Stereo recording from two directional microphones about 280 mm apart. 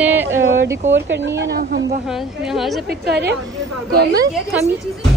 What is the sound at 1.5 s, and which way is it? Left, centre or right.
Speech, right.